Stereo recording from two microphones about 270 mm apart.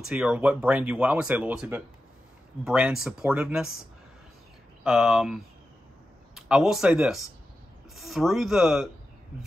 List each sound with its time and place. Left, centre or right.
0.1 s speech: centre
4.8 s speech: centre